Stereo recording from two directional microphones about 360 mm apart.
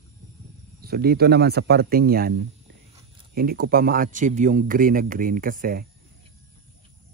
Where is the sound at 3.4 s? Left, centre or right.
Right.